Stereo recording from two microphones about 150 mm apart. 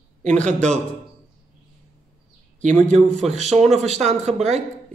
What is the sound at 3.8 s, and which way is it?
Speech, 45° right (ahead or behind).